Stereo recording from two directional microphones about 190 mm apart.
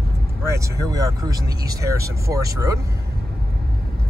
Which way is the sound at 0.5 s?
15° right (ahead or behind).